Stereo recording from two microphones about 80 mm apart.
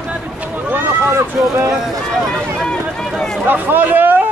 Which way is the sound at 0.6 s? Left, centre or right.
Right.